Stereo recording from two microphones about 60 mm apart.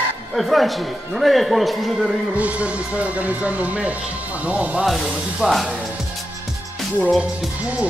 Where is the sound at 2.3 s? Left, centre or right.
Right.